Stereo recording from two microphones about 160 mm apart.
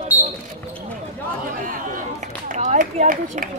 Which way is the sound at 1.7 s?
50° right (ahead or behind).